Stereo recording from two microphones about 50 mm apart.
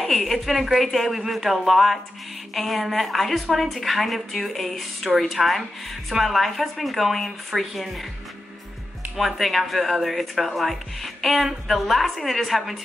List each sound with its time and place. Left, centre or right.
0.0 s speech: centre
9.1 s speech: centre